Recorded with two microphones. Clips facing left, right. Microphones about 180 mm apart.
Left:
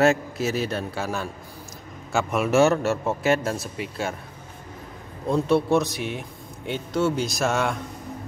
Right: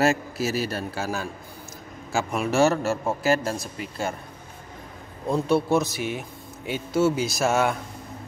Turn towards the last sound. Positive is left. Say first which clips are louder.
# right 2 dB
turn(degrees=-5)  # may be behind; listen again after turning